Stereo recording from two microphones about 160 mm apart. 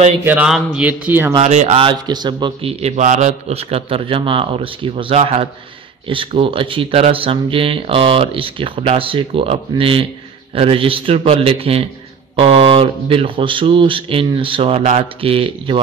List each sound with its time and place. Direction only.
0.2 s speech: 10° right (ahead or behind)
1.4 s speech: 45° right (ahead or behind)
3.0 s speech: 50° right (ahead or behind); by 15.8 s 35° right (ahead or behind)